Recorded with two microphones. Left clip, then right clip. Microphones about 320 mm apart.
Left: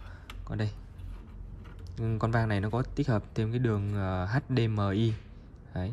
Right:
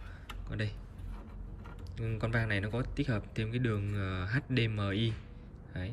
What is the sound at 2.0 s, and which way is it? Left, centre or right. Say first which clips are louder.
Speech: left 4 dB; centre.